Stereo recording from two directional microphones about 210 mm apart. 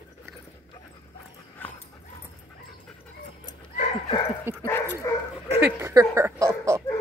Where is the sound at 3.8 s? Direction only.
30° left (ahead or behind).